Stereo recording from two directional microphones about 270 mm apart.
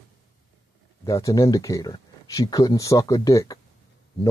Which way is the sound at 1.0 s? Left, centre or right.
Centre.